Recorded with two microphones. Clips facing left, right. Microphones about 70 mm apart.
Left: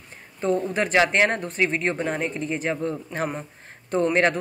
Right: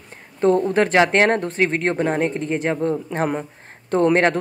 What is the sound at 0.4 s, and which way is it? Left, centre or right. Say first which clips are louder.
Speech: right 7 dB; right.